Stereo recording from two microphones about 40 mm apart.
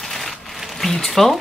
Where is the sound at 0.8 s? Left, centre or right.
Centre.